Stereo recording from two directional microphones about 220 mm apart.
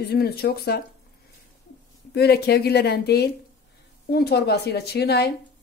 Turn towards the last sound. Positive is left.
turn(degrees=50)  # may be behind; listen again after turning